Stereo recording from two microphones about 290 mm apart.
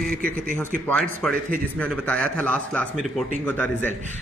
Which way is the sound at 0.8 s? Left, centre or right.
Centre.